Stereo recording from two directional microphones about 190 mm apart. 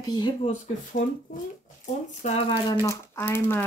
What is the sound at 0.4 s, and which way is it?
Speech, 40° left (ahead or behind).